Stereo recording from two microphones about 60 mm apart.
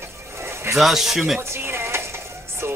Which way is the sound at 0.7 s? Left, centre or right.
Centre.